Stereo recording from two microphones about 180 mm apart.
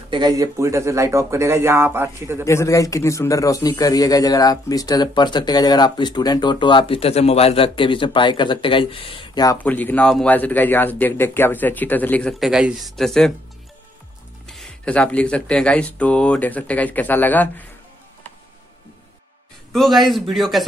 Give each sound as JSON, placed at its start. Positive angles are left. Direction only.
{"t": 0.1, "sound": "speech", "side_deg": -20}
{"t": 2.4, "sound": "a man's voice", "side_deg": 15}
{"t": 9.6, "sound": "speech", "side_deg": 10}
{"t": 14.5, "sound": "speech", "side_deg": 5}
{"t": 19.7, "sound": "a man's voice", "side_deg": 0}